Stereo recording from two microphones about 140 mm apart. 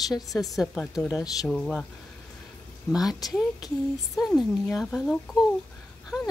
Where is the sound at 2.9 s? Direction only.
5° right (ahead or behind).